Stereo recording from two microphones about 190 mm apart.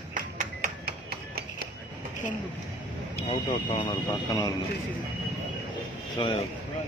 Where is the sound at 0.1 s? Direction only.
45° right (ahead or behind).